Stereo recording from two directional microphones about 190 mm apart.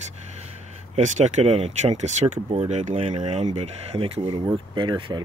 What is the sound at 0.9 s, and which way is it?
Speech, 40° right (ahead or behind).